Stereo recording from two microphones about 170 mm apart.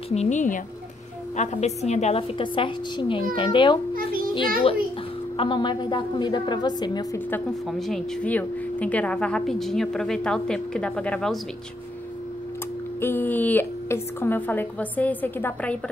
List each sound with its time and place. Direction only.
0.1 s a woman's voice: 40° left (ahead or behind)
3.9 s child singing: 55° right (ahead or behind)
5.4 s a woman's voice: 25° left (ahead or behind)
7.6 s speech: centre (ahead or behind)
13.0 s a woman's voice: 10° left (ahead or behind)